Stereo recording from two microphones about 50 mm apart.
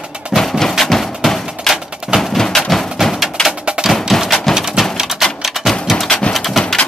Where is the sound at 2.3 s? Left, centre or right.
Centre.